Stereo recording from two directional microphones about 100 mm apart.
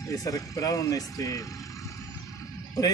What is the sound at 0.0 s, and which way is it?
Speech, 35° left (ahead or behind).